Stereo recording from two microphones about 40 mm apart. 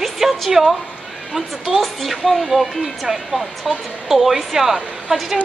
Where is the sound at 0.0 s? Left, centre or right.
Centre.